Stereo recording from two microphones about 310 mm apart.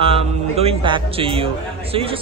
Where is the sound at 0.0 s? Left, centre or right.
Centre.